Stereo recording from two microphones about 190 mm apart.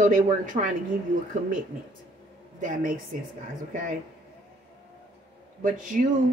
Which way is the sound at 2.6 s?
45° right (ahead or behind).